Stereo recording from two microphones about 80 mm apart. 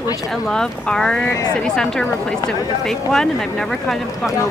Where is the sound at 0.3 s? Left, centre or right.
Centre.